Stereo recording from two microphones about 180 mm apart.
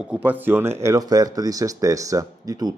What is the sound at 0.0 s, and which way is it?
Speech, 5° right (ahead or behind).